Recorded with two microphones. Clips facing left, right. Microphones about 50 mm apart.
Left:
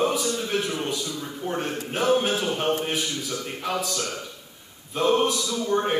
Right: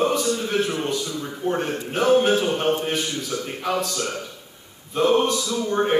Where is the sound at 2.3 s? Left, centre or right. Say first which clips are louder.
Right 5 dB; centre.